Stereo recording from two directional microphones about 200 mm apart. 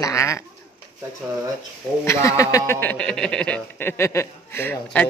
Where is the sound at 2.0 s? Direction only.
15° left (ahead or behind).